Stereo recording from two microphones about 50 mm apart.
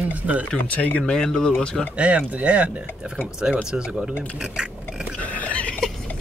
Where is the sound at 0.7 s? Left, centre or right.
Left.